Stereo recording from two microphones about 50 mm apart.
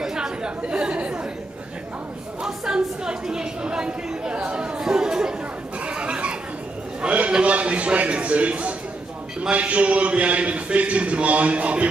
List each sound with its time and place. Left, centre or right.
0.0 s chatter: centre
0.6 s a man's voice: centre
2.4 s chatter: centre
5.9 s a sound: right
7.0 s a man's voice: right